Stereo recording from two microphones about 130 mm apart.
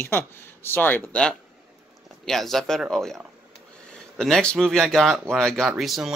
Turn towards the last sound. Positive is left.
turn(degrees=0)  # may be behind; listen again after turning